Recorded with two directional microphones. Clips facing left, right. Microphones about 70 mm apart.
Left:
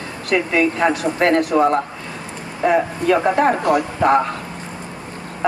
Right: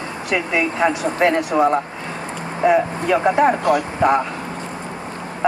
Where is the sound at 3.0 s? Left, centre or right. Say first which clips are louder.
Even; centre.